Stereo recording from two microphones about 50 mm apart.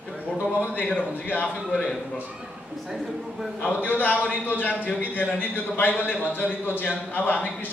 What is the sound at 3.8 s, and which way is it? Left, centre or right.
A man's voice, left.